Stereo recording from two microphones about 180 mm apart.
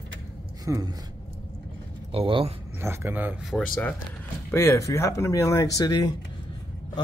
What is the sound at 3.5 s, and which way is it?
Speech, 5° left (ahead or behind).